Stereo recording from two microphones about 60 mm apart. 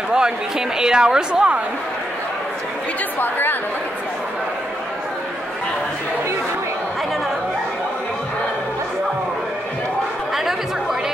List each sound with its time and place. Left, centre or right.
0.1 s speech: centre
3.2 s a woman's voice: left
10.3 s chatter: centre